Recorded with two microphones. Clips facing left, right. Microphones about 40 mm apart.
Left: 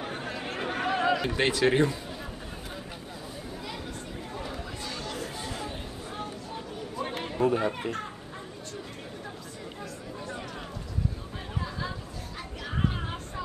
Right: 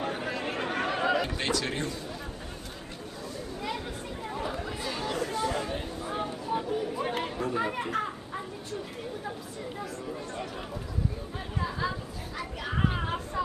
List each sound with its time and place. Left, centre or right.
0.0 s chatter: centre
1.3 s speech: left
4.4 s chatter: centre
7.3 s chatter: centre
7.6 s a child's voice: centre
12.6 s a sound: centre